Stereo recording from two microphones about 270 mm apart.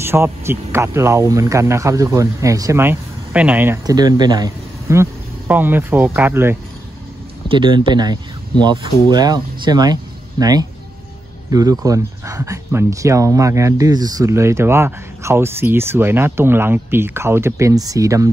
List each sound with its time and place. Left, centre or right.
0.0 s speech: centre